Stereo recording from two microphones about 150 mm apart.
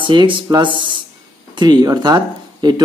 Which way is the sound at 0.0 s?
30° right (ahead or behind).